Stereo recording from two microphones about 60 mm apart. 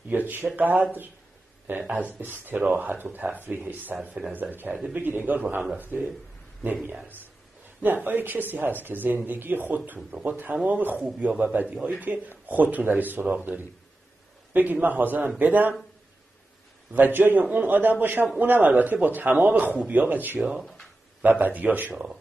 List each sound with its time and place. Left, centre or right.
0.6 s speech: right
16.9 s speech: right